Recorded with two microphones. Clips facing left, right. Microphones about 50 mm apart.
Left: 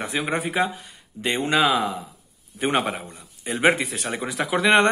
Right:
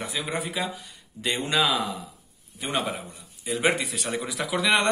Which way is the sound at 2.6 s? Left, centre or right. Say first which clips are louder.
Left 6 dB; left.